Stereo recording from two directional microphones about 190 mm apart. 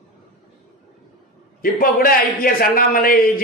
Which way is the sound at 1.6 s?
50° left (ahead or behind).